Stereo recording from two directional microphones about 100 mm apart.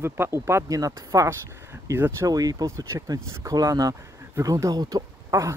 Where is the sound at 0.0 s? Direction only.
25° right (ahead or behind).